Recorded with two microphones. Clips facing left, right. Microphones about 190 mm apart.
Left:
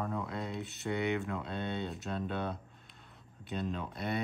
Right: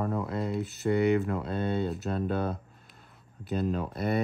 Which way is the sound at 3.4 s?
5° right (ahead or behind).